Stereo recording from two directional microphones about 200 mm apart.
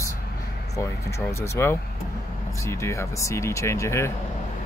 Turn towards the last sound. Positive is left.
turn(degrees=15)  # may be behind; listen again after turning